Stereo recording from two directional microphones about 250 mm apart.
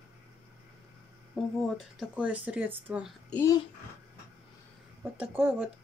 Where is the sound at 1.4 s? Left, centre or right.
Centre.